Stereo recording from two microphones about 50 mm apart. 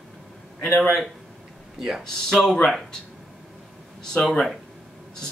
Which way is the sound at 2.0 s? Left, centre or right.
Centre.